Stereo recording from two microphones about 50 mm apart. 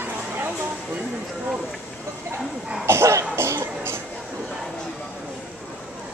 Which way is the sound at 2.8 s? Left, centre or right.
Right.